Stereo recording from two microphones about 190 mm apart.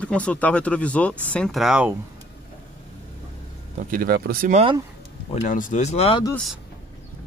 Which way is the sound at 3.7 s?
50° right (ahead or behind).